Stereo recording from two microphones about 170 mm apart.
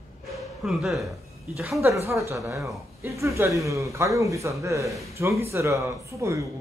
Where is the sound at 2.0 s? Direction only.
15° right (ahead or behind).